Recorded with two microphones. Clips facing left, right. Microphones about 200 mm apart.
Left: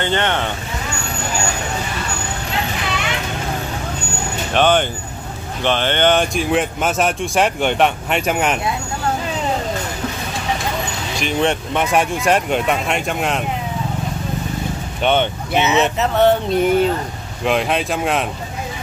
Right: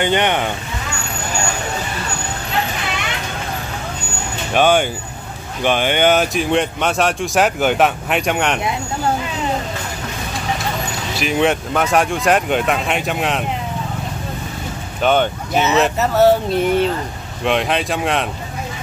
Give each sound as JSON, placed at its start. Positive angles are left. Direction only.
{"t": 0.0, "sound": "speech", "side_deg": -15}
{"t": 4.6, "sound": "speech", "side_deg": -10}
{"t": 11.1, "sound": "speech", "side_deg": -5}
{"t": 15.0, "sound": "speech", "side_deg": -5}